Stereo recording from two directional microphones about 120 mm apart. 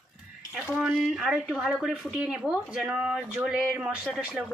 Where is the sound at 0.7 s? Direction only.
5° right (ahead or behind).